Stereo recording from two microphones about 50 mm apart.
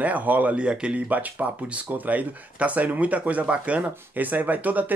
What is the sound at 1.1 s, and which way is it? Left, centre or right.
Speech, right.